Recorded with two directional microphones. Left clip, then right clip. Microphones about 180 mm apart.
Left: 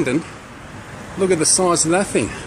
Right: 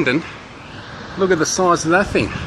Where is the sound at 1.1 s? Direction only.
15° left (ahead or behind).